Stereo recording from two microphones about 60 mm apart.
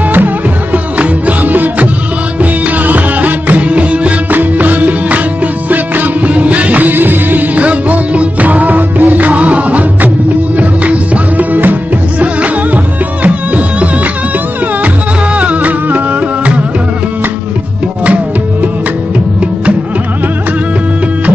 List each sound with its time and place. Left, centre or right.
0.9 s music: right
13.2 s music: right
15.3 s music: right